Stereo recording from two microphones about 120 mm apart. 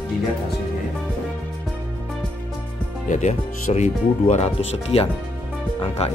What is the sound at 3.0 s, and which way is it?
Speech, 85° left.